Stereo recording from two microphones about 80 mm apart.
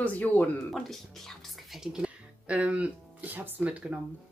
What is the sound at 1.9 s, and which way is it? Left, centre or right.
Speech, centre.